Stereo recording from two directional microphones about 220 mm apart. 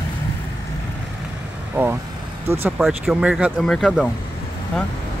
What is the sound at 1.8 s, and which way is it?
Vehicle, 10° right (ahead or behind).